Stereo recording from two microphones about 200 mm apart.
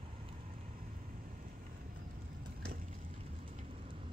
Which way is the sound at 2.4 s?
45° right (ahead or behind).